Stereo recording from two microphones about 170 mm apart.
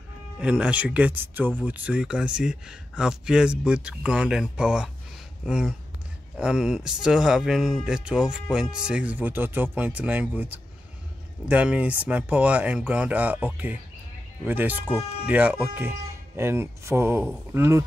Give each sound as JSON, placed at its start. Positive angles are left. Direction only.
{"t": 0.4, "sound": "speech", "side_deg": -5}